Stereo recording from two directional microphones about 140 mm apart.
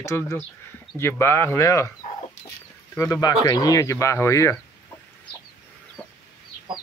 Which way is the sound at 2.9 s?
20° left (ahead or behind).